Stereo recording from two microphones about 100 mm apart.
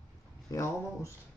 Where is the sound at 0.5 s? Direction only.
35° left (ahead or behind).